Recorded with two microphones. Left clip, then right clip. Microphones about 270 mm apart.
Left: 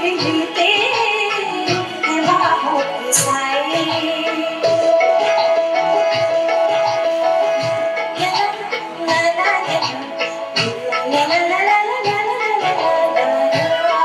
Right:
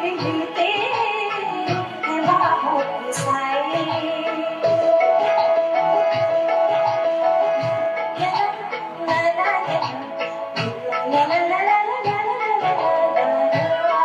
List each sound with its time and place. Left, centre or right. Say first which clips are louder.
0.3 s music: left 5 dB; centre
9.1 s music: left 3 dB; centre
11.1 s music: left 2 dB; centre